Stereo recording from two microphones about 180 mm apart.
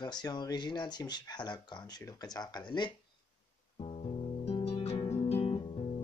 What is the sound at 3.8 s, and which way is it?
Music, 35° left (ahead or behind).